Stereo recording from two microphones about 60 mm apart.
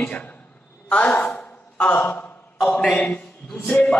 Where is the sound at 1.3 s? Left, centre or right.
Left.